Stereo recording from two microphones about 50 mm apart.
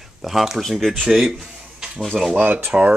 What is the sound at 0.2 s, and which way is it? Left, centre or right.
Speech, centre.